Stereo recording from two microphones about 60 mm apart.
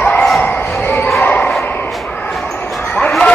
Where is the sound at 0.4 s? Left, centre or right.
Left.